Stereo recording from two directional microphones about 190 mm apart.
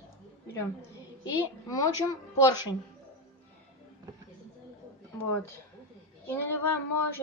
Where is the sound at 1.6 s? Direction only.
15° left (ahead or behind).